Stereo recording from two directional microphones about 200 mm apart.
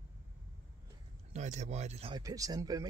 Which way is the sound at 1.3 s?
35° right (ahead or behind).